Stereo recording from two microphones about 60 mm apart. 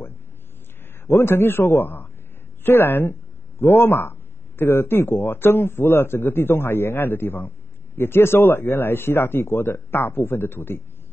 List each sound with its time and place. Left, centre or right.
1.0 s speech: left